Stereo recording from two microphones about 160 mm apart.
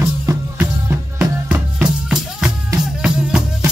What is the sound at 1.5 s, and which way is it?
Music, 5° right (ahead or behind).